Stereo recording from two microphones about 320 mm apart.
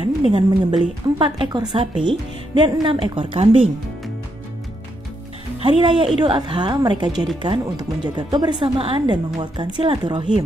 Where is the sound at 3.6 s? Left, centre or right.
Centre.